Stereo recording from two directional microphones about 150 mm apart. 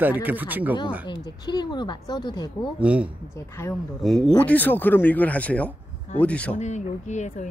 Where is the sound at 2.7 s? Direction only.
10° right (ahead or behind).